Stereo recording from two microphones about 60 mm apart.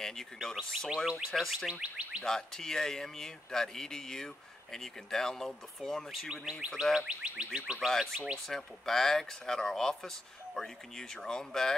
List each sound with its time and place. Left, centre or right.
0.0 s speech: centre
1.7 s chirp tone: centre
2.2 s speech: centre
6.2 s chirp tone: centre
6.8 s speech: centre
7.1 s chirp tone: centre
7.9 s speech: centre